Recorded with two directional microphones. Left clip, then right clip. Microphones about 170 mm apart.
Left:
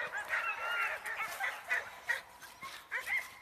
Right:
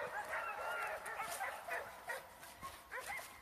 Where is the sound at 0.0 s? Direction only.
40° right (ahead or behind).